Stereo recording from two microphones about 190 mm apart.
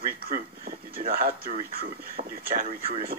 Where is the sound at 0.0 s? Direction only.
50° right (ahead or behind).